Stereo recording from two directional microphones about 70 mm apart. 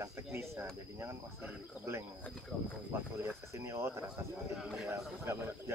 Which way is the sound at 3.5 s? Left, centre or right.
Right.